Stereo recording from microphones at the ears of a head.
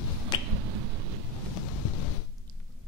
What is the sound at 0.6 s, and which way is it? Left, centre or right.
Finger snapping, right.